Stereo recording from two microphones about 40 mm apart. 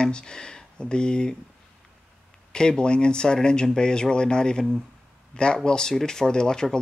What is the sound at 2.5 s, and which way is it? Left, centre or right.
Speech, centre.